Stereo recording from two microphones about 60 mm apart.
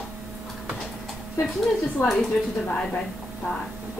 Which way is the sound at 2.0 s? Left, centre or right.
Left.